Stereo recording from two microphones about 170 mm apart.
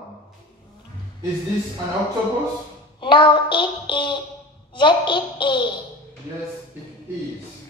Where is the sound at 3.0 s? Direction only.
30° left (ahead or behind).